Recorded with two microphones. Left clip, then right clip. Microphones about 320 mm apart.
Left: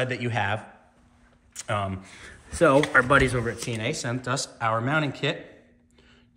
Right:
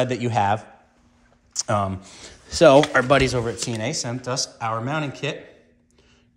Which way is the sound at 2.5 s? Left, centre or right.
Centre.